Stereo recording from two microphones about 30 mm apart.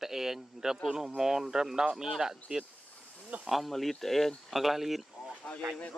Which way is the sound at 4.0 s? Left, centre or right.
Centre.